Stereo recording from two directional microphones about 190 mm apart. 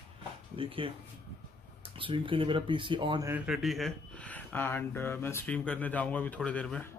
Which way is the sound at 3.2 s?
5° right (ahead or behind).